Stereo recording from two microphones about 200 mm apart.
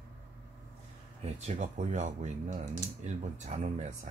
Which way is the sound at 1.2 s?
35° right (ahead or behind).